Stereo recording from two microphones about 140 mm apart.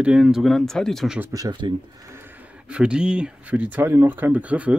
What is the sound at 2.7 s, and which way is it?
Speech, 5° right (ahead or behind).